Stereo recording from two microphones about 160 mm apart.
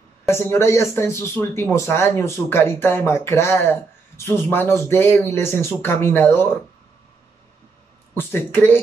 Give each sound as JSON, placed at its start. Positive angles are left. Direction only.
{"t": 0.3, "sound": "speech", "side_deg": 15}
{"t": 8.2, "sound": "speech", "side_deg": 15}